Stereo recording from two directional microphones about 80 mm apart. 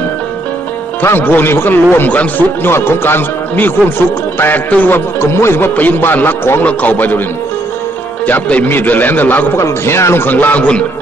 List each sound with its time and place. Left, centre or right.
1.0 s a man's voice: left
8.3 s a man's voice: left
9.6 s a man's voice: left; by 10.9 s centre